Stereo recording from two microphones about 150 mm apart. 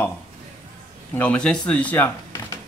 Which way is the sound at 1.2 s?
10° left (ahead or behind).